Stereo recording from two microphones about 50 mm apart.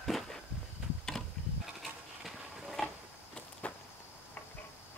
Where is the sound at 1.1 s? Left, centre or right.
Centre.